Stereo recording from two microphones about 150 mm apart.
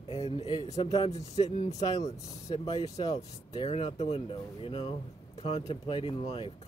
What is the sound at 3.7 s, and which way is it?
Speech, 40° left (ahead or behind).